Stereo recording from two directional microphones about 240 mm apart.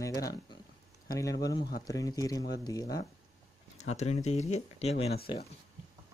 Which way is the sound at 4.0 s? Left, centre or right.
Left.